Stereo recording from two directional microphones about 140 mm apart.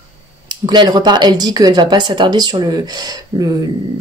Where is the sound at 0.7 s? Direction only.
30° right (ahead or behind).